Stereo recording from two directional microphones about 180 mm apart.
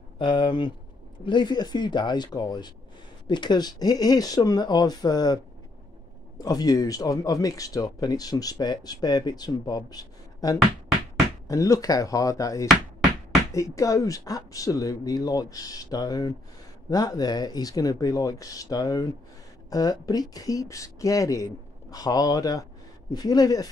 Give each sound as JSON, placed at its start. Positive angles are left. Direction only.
{"t": 0.2, "sound": "speech", "side_deg": 25}